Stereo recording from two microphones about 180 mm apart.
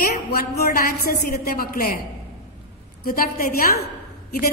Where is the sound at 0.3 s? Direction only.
60° left (ahead or behind).